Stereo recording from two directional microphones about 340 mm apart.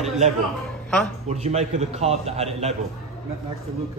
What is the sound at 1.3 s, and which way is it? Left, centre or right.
A man's voice, centre.